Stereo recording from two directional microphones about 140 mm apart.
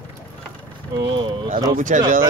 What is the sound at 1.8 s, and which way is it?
Speech, 70° right (ahead or behind).